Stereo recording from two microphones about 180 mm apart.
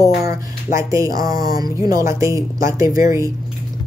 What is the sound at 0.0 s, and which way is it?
A woman's voice, 20° right (ahead or behind).